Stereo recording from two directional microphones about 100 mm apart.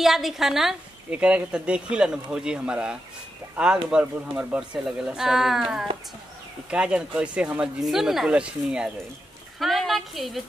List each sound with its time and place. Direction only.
0.0 s a woman's voice: centre (ahead or behind)